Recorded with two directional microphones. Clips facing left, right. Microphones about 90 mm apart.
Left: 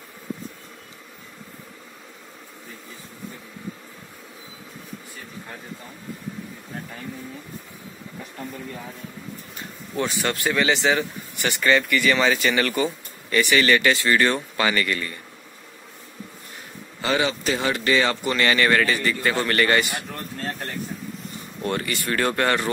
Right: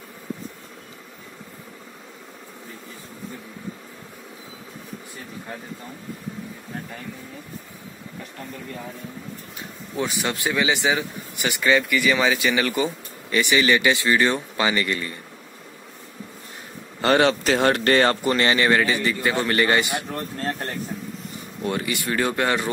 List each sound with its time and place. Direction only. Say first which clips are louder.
9.9 s a man's voice: left 1 dB; 15° right (ahead or behind)
17.0 s speech: right 5 dB; 60° right (ahead or behind)
18.3 s a man's voice: right 1 dB; 25° right (ahead or behind)
20.1 s speech: right 3 dB; 35° right (ahead or behind)
21.6 s a man's voice: even; 10° right (ahead or behind)